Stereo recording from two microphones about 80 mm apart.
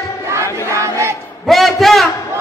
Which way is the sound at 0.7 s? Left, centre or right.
Right.